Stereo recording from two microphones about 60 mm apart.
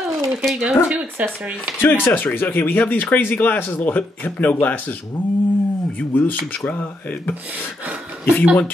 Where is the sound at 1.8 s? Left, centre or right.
Left.